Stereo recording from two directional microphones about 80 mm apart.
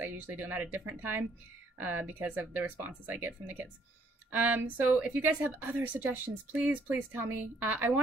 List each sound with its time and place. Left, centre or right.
0.0 s a woman's voice: right